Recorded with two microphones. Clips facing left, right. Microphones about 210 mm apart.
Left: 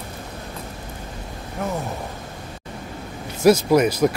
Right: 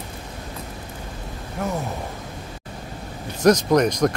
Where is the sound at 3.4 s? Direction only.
5° left (ahead or behind).